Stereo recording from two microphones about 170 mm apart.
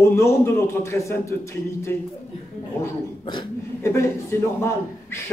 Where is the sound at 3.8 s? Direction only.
15° left (ahead or behind).